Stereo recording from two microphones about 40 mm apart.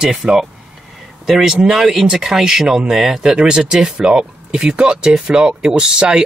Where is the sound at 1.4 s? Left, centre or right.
Centre.